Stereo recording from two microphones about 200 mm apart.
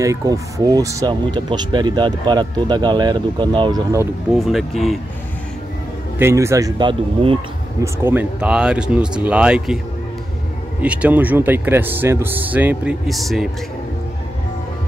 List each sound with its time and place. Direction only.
0.0 s speech: 15° right (ahead or behind)
4.3 s speech: centre (ahead or behind)
6.1 s speech: 15° right (ahead or behind)
7.8 s speech: 10° right (ahead or behind)
10.8 s speech: 5° right (ahead or behind)